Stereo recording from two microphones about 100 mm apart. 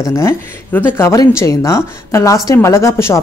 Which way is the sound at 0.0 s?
25° left (ahead or behind).